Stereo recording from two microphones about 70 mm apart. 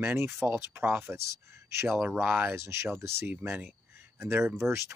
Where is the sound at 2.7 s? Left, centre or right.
Right.